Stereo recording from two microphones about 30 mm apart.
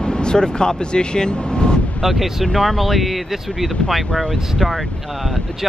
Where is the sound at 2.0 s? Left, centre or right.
Centre.